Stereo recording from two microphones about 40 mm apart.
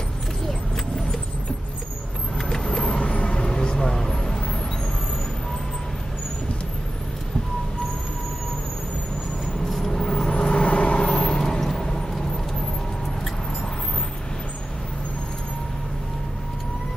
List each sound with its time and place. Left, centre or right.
2.5 s vehicle: centre
9.8 s vehicle: centre
10.3 s vehicle: left